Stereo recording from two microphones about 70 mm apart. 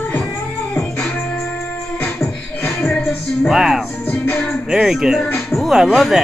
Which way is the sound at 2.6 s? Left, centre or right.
Centre.